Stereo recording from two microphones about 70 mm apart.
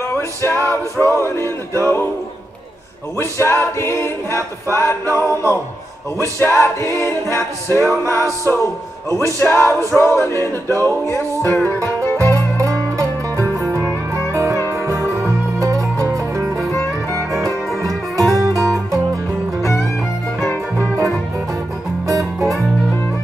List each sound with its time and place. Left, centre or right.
0.1 s music: left
1.8 s a capella: left
3.2 s a capella: left
10.8 s music: left
12.5 s music: right
18.3 s music: right
19.6 s music: left
22.0 s music: right